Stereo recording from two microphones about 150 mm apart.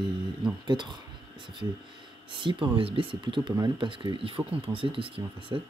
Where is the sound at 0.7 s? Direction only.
30° right (ahead or behind).